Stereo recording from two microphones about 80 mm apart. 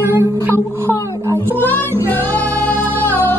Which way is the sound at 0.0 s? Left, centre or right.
Right.